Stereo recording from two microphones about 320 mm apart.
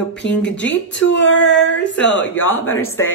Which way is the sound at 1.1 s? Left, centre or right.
Left.